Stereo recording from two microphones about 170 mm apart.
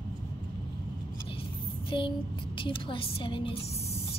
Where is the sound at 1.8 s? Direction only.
30° left (ahead or behind).